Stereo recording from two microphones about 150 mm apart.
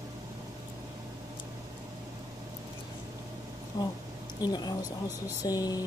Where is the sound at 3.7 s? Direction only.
25° left (ahead or behind).